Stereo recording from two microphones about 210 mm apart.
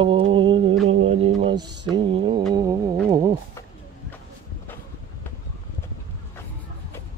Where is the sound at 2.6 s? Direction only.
20° right (ahead or behind).